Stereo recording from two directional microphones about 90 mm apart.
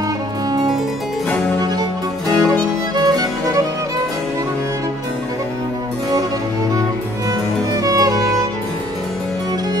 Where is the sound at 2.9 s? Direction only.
45° right (ahead or behind).